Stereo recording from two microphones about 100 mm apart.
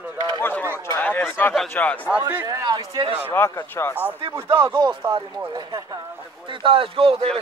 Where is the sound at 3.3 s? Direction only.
25° left (ahead or behind).